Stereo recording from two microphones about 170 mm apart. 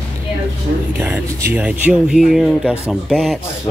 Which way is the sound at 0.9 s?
10° right (ahead or behind).